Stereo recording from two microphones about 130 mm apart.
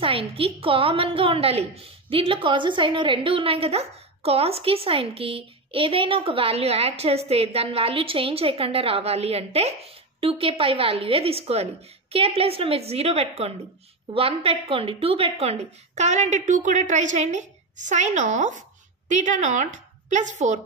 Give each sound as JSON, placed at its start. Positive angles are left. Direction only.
{"t": 0.0, "sound": "a woman's voice", "side_deg": -45}